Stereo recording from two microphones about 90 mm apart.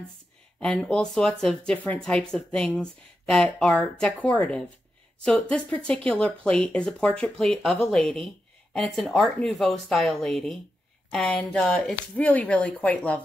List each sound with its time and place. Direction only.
0.6 s speech: 10° left (ahead or behind)